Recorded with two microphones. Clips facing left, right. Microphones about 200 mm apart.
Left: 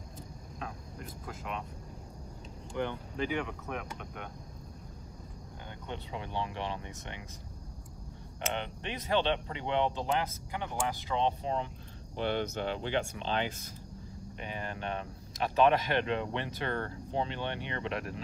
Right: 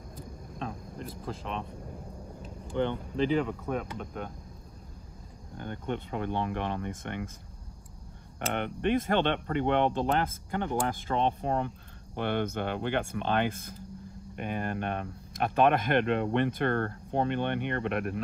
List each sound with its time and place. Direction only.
2.8 s speech: 25° right (ahead or behind)
5.6 s speech: 50° right (ahead or behind)
8.5 s speech: 55° right (ahead or behind)